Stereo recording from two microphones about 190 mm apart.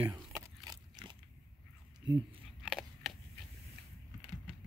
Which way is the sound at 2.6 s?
Centre (ahead or behind).